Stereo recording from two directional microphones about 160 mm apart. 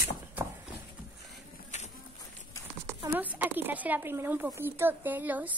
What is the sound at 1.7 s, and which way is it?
Insect, 50° left (ahead or behind).